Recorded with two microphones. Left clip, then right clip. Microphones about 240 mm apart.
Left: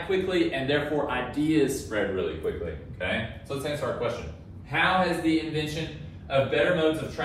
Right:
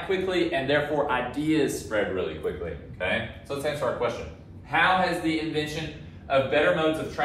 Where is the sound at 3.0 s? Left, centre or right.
Centre.